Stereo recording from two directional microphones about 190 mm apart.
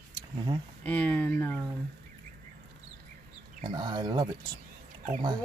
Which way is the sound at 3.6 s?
25° right (ahead or behind).